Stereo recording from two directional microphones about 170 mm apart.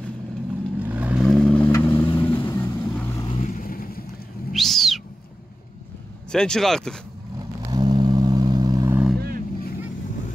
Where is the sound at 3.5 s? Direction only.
60° left (ahead or behind).